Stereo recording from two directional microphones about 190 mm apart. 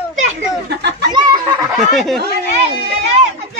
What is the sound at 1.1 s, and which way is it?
Speech, 25° right (ahead or behind).